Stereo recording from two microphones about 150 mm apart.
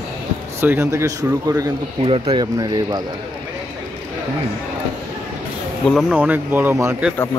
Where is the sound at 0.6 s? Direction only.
15° right (ahead or behind).